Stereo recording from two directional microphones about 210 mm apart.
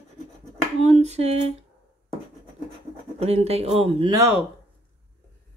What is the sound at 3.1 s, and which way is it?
Speech, 30° right (ahead or behind).